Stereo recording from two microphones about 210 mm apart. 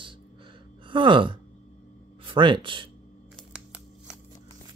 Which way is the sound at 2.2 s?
25° right (ahead or behind).